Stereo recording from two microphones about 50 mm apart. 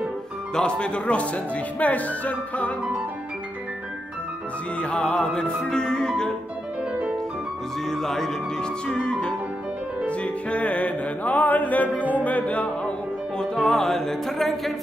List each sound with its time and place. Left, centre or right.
0.6 s speech: centre
4.7 s speech: left
7.8 s speech: centre
10.0 s music: left
11.9 s music: right
12.3 s music: left
13.4 s speech: centre